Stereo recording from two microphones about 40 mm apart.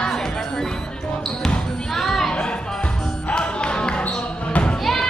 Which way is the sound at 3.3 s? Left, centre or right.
Left.